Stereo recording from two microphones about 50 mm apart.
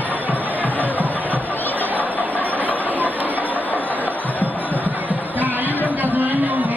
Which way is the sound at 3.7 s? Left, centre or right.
Left.